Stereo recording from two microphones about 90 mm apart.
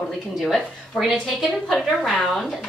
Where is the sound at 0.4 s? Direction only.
Centre (ahead or behind).